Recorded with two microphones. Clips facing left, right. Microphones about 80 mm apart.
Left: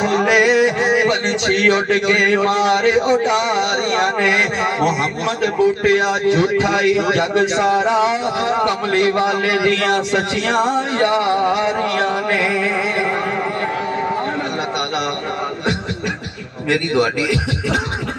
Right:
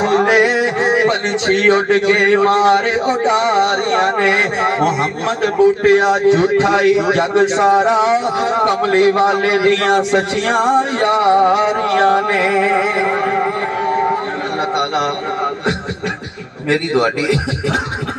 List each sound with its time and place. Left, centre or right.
0.0 s music: right